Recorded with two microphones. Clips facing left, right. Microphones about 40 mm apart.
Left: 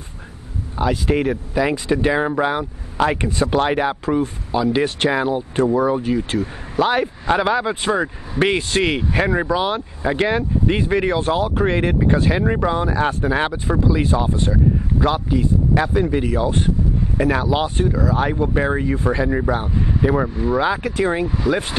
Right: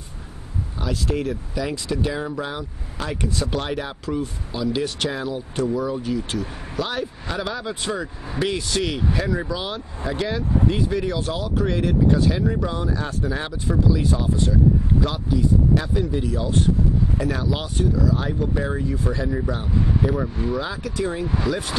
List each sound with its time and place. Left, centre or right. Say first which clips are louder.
0.7 s speech: left 7 dB; left
3.3 s speech: left 7 dB; left
3.6 s speech: left 8 dB; left
16.3 s speech: left 2 dB; left
17.2 s speech: left 7 dB; left